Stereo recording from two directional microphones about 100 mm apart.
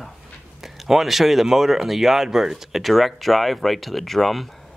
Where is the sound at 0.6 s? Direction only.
5° right (ahead or behind).